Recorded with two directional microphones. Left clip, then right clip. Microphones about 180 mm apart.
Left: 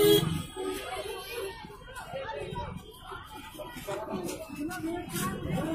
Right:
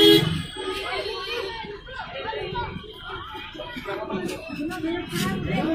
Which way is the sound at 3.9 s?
Centre (ahead or behind).